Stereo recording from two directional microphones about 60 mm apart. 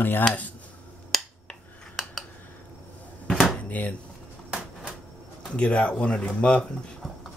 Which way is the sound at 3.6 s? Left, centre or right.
Left.